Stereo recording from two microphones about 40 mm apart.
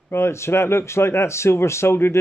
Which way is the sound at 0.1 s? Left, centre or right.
Left.